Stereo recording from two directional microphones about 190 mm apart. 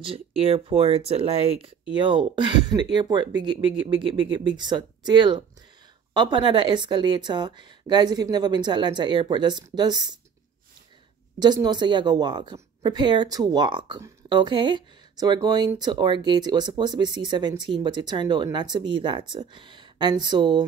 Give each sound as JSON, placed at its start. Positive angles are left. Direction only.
{"t": 0.0, "sound": "a woman's voice", "side_deg": -30}
{"t": 11.3, "sound": "a woman's voice", "side_deg": -20}